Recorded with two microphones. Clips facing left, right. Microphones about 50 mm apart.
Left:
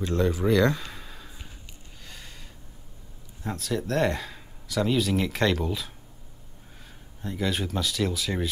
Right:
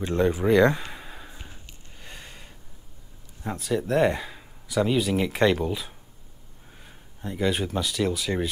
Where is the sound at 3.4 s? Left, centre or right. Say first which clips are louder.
Right 2 dB; centre.